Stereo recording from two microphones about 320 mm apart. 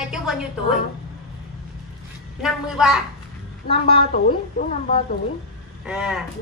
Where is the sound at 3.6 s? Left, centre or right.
Centre.